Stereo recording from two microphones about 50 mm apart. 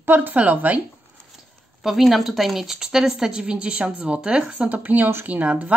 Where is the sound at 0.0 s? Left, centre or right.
Right.